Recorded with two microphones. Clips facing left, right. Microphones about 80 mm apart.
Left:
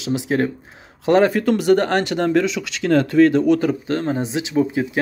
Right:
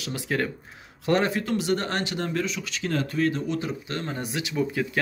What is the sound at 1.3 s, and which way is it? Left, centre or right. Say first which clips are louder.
Speech: left 10 dB; left.